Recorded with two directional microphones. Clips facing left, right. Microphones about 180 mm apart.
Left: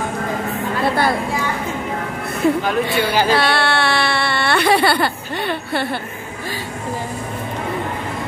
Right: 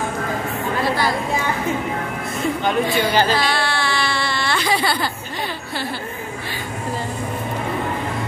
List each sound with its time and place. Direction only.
0.8 s a sound: 55° left (ahead or behind)
2.6 s a woman's voice: 5° left (ahead or behind)
3.3 s baby cry: 65° left (ahead or behind)